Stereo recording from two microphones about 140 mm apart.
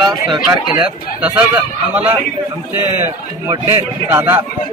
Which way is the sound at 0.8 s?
10° right (ahead or behind).